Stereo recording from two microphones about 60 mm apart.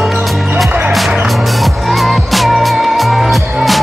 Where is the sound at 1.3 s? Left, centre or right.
Centre.